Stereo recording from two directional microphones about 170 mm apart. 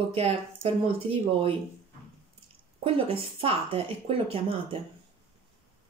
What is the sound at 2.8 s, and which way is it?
Speech, 35° right (ahead or behind).